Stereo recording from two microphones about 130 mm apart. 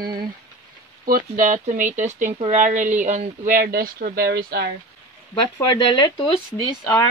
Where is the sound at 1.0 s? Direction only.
90° right.